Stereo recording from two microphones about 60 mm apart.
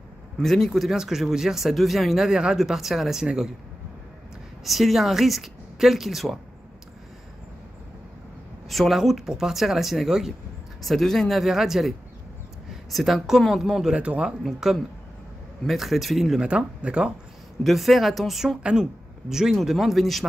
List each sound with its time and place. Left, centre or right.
0.4 s speech: centre
4.6 s speech: centre
8.6 s speech: centre
12.9 s speech: centre
13.9 s speech: centre
14.4 s speech: centre
16.3 s speech: centre
17.6 s speech: centre
18.6 s speech: centre